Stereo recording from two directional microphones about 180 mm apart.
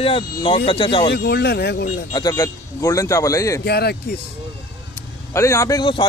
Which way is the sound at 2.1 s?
20° left (ahead or behind).